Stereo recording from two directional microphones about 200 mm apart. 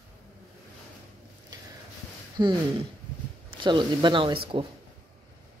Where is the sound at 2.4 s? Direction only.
20° right (ahead or behind).